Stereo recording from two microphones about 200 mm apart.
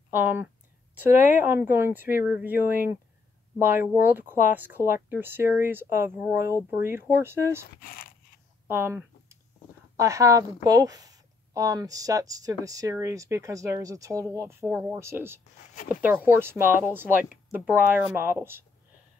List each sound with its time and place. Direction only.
0.1 s speech: 10° right (ahead or behind)
7.8 s speech: 45° left (ahead or behind)
8.6 s a sound: 10° right (ahead or behind)
9.9 s speech: 15° right (ahead or behind)